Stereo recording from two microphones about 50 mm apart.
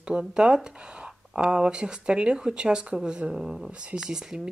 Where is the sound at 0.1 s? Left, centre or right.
Centre.